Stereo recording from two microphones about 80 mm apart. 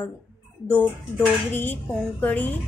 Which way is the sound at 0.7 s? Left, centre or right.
Centre.